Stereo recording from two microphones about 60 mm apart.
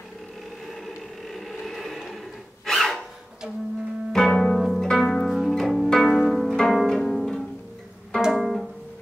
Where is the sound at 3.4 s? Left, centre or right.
Centre.